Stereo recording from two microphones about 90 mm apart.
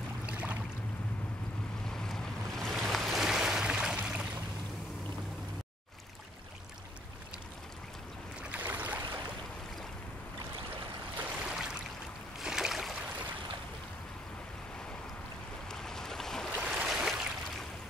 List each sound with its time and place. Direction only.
0.3 s boat: 15° right (ahead or behind)
1.9 s boat: 5° left (ahead or behind); by 4.3 s 10° right (ahead or behind)
8.5 s boat: 15° right (ahead or behind)
11.1 s a sound: 10° right (ahead or behind)
12.4 s boat: 5° right (ahead or behind)
15.7 s boat: 5° left (ahead or behind)
16.7 s a sound: 5° right (ahead or behind)